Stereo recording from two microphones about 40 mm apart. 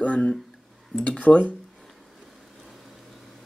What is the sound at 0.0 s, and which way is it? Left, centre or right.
Speech, left.